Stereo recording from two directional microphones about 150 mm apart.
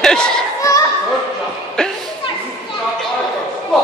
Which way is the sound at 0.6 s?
20° left (ahead or behind).